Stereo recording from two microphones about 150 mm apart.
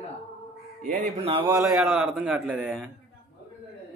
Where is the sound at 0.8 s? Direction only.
65° right (ahead or behind).